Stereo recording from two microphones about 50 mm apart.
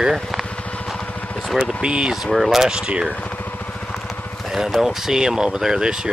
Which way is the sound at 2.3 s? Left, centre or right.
Centre.